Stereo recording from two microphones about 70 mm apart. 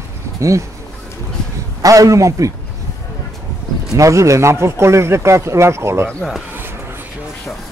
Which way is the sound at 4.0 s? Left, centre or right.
Right.